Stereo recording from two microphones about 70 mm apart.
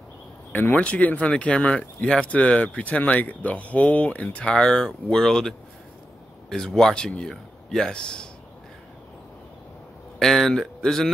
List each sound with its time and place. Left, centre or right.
0.5 s speech: left
10.1 s speech: centre